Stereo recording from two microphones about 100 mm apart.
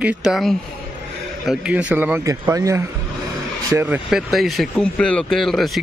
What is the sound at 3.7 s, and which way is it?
Speech, 20° right (ahead or behind).